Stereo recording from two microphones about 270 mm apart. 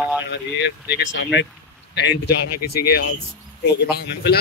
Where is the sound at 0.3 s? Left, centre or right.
Left.